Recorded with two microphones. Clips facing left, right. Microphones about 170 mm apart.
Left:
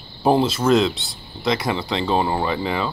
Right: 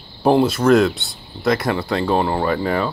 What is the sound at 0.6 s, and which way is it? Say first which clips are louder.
Speech: right 3 dB; 20° left (ahead or behind).